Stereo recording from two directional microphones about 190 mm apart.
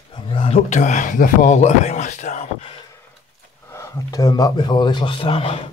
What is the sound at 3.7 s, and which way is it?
Speech, 15° left (ahead or behind).